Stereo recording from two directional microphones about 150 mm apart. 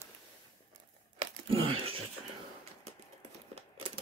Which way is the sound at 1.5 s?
35° right (ahead or behind).